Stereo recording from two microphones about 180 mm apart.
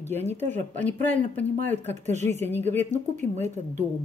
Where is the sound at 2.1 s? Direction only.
40° right (ahead or behind).